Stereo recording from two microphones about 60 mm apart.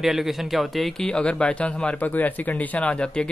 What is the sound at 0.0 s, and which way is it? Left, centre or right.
Speech, centre.